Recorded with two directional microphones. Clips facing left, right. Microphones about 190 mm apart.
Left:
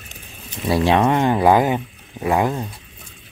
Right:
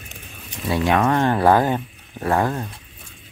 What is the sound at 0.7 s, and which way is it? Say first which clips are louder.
Speech: left 3 dB; 30° left (ahead or behind).